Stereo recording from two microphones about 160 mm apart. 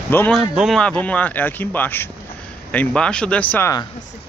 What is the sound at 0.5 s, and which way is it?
Speech, centre (ahead or behind).